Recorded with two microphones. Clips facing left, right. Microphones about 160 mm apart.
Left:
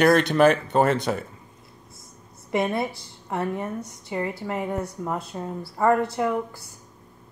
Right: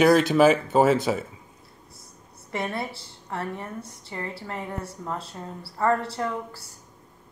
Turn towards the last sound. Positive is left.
turn(degrees=15)  # may be behind; listen again after turning